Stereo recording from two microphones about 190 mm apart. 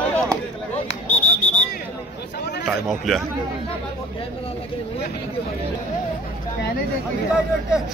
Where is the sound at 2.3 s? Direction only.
60° left (ahead or behind).